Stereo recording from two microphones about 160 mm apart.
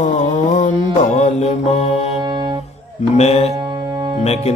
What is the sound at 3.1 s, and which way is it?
Music, 40° left (ahead or behind).